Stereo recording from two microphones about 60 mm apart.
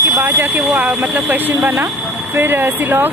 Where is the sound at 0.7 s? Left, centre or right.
Right.